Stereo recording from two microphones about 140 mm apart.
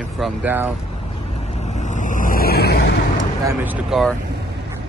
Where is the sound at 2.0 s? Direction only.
65° left (ahead or behind); by 2.5 s 80° left.